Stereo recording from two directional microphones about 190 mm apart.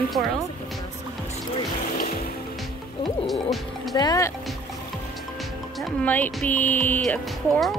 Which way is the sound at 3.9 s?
20° left (ahead or behind).